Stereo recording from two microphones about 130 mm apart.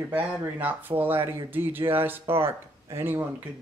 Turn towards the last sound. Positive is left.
turn(degrees=-15)  # may be behind; listen again after turning